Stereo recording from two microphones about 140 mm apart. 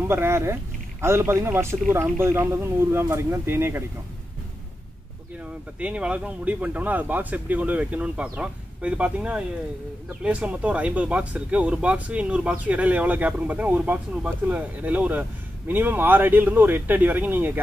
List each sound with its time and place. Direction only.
0.0 s speech: 15° right (ahead or behind)
5.4 s speech: 10° right (ahead or behind)